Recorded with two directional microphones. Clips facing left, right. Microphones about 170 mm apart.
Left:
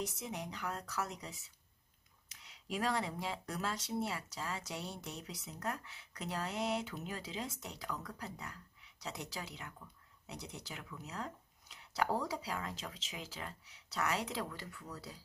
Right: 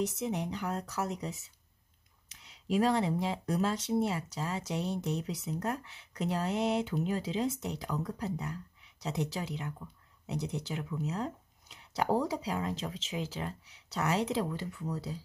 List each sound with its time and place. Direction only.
0.0 s speech: 25° right (ahead or behind)